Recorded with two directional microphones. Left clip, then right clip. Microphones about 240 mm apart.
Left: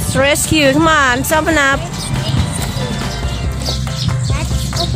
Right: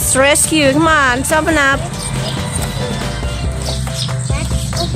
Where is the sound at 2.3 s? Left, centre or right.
Centre.